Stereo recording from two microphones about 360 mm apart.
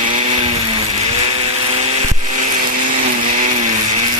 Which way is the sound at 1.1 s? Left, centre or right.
Centre.